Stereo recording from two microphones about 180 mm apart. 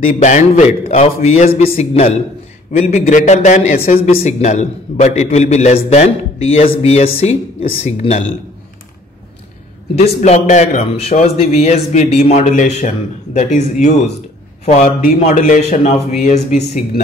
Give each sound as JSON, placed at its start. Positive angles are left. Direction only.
{"t": 0.1, "sound": "a man's voice", "side_deg": 45}
{"t": 10.2, "sound": "a man's voice", "side_deg": 40}